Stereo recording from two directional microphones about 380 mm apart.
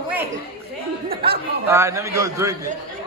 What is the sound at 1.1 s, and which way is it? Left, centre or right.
Speech, right.